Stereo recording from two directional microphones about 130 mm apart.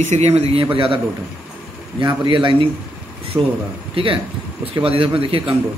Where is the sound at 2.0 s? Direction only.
40° right (ahead or behind).